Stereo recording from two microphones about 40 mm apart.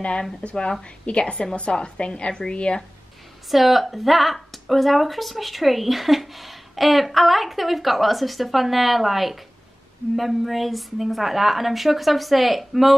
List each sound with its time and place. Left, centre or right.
0.4 s a woman's voice: left
3.4 s speech: centre